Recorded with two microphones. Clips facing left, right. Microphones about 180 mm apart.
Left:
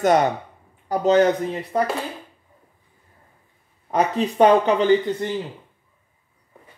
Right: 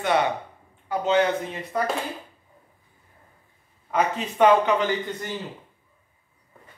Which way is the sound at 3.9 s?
35° left (ahead or behind).